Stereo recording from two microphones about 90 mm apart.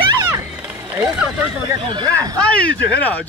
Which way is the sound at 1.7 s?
60° right (ahead or behind).